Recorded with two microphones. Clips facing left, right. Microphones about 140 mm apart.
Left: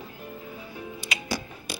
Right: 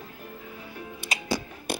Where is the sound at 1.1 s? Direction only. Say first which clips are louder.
Right 2 dB; 40° right (ahead or behind).